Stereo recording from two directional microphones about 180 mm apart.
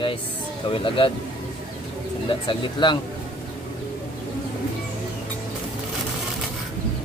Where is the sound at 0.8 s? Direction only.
30° left (ahead or behind).